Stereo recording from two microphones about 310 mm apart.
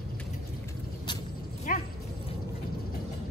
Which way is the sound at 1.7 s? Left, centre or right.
Left.